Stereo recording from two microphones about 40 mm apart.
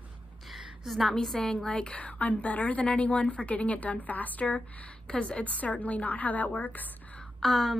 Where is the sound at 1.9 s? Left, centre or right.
Left.